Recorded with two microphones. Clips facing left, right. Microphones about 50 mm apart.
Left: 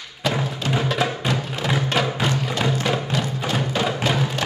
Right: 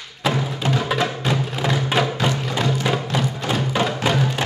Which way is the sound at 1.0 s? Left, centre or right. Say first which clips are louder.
Right 1 dB; centre.